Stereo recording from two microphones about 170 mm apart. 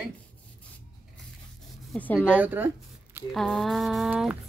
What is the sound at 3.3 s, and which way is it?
Speech, centre (ahead or behind).